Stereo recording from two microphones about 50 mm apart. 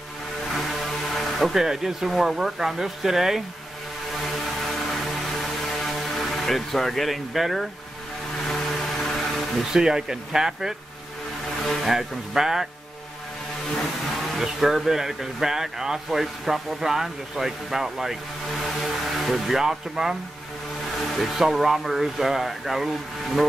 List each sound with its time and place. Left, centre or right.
0.6 s speech: centre
5.9 s speech: centre
9.0 s vehicle: centre
9.7 s speech: centre
14.4 s speech: centre
19.1 s speech: centre
21.2 s speech: centre